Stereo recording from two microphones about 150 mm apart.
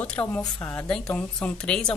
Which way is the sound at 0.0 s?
10° left (ahead or behind).